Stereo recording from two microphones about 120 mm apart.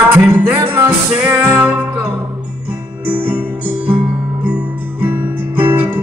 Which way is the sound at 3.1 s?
15° right (ahead or behind).